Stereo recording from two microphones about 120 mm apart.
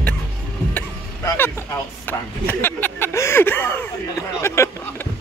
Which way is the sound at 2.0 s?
15° left (ahead or behind).